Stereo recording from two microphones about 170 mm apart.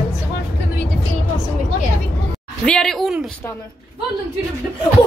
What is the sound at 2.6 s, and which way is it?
Speech, 5° left (ahead or behind).